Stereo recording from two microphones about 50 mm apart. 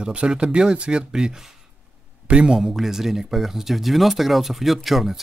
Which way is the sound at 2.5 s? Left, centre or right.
Centre.